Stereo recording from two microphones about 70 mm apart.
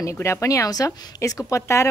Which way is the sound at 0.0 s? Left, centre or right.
Left.